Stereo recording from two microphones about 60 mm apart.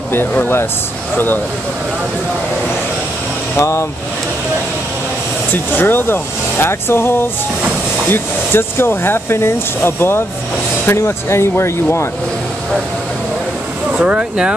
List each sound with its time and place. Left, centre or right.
0.4 s speech: left
3.5 s speech: left
5.5 s speech: left
13.9 s speech: centre